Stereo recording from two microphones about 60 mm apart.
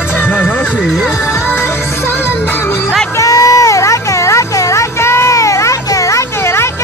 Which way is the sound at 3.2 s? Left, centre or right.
Left.